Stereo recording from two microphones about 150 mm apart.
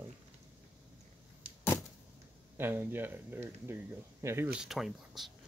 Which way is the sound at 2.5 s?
15° right (ahead or behind).